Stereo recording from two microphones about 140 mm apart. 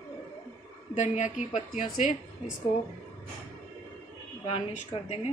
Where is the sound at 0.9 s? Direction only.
60° left (ahead or behind).